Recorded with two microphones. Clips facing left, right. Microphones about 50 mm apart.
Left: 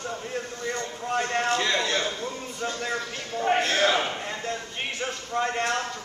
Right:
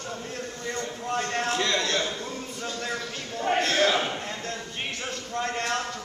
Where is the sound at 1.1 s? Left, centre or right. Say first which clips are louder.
Left 3 dB; centre.